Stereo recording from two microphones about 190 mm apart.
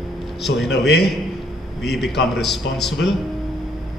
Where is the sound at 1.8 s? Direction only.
Centre (ahead or behind).